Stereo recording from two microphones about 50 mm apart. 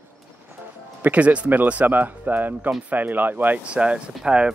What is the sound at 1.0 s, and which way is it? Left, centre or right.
Speech, right.